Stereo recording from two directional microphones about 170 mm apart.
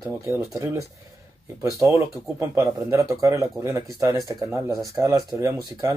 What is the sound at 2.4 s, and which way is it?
Speech, 20° right (ahead or behind).